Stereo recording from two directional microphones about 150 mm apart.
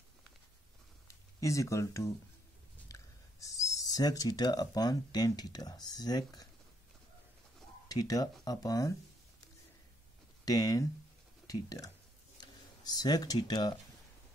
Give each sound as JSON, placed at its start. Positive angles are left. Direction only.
{"t": 1.0, "sound": "a sound", "side_deg": 20}
{"t": 2.9, "sound": "speech", "side_deg": 20}
{"t": 7.9, "sound": "speech", "side_deg": 25}
{"t": 10.4, "sound": "speech", "side_deg": 25}